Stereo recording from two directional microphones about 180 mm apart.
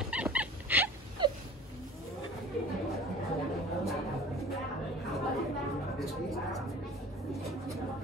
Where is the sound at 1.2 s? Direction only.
25° right (ahead or behind).